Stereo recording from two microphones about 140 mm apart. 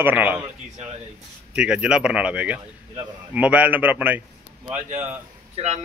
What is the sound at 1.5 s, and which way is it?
A man's voice, 5° right (ahead or behind).